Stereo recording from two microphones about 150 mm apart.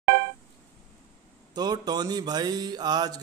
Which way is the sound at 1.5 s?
25° right (ahead or behind).